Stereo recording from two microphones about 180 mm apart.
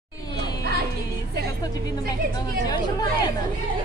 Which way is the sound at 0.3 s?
20° left (ahead or behind).